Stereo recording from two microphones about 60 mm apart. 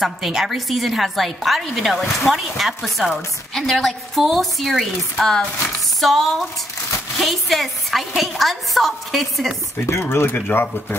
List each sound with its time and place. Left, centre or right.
0.0 s a woman's voice: centre
5.2 s a sound: centre
5.9 s a woman's voice: centre
9.8 s speech: left